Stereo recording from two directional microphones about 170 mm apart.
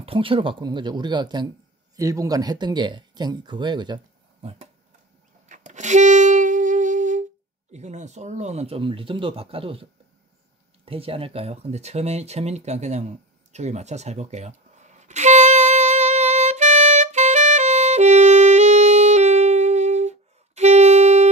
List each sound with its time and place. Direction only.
0.0 s speech: 30° right (ahead or behind)
5.5 s music: 45° right (ahead or behind)
7.7 s speech: 40° right (ahead or behind)
10.9 s speech: 35° right (ahead or behind)
13.5 s a sound: 40° right (ahead or behind)